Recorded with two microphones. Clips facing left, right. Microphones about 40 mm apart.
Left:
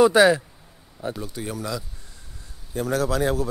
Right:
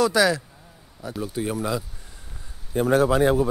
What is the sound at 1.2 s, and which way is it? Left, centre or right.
A man's voice, centre.